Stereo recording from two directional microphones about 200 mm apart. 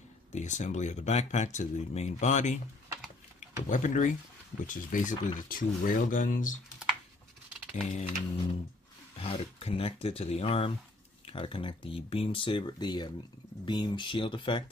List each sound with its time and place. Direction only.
0.3 s speech: 35° left (ahead or behind)
7.7 s speech: 35° left (ahead or behind)
9.2 s speech: 30° left (ahead or behind)